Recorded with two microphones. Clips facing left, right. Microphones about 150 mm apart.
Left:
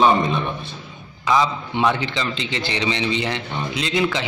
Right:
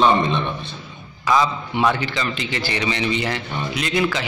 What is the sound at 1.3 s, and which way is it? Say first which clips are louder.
A man's voice: even; 15° left (ahead or behind).